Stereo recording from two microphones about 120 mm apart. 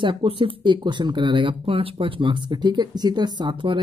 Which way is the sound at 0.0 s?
45° right (ahead or behind).